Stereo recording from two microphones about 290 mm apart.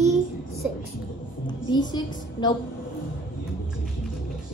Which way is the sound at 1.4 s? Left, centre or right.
Centre.